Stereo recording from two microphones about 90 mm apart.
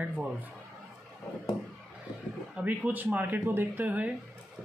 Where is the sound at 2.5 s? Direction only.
15° right (ahead or behind).